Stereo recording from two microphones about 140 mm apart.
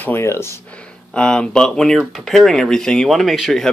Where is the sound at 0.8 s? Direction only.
5° left (ahead or behind).